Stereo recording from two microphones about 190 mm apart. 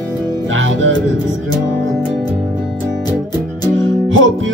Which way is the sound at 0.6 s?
85° right.